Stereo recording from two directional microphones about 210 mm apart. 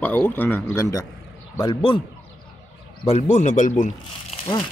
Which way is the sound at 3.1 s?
35° left (ahead or behind).